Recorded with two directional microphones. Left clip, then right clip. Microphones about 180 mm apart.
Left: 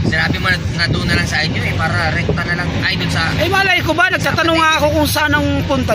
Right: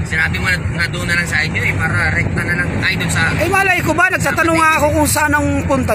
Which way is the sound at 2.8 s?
10° left (ahead or behind).